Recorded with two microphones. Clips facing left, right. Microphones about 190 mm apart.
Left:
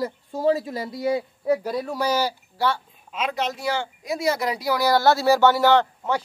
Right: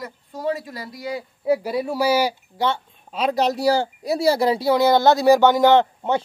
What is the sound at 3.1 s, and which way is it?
Speech, 35° right (ahead or behind).